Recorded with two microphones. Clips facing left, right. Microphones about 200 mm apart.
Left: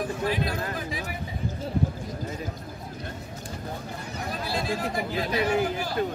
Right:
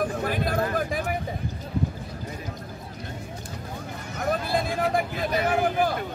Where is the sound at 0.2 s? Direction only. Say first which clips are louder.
Right 2 dB; 50° right (ahead or behind).